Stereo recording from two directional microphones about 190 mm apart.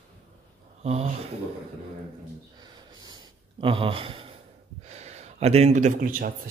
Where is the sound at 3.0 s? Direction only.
25° right (ahead or behind).